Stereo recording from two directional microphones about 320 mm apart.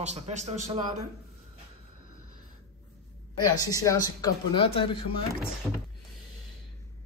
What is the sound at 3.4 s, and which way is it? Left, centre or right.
Speech, centre.